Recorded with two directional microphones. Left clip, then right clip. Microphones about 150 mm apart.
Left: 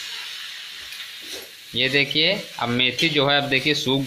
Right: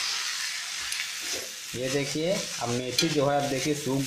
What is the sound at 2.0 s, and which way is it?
Speech, 10° left (ahead or behind).